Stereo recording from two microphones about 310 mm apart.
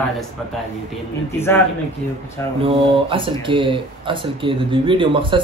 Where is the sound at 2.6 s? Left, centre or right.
Centre.